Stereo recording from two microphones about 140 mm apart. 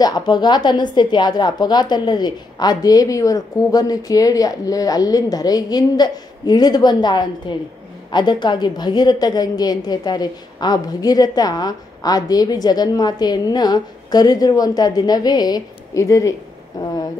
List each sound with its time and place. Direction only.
0.0 s a woman's voice: 30° left (ahead or behind)